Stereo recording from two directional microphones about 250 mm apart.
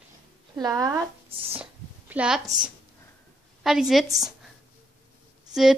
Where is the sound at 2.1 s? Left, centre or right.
Centre.